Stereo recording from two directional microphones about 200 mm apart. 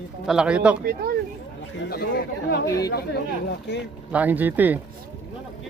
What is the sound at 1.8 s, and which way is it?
Speech, 55° left (ahead or behind).